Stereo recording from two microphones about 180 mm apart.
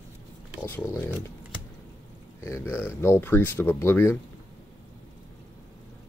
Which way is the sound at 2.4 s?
15° left (ahead or behind).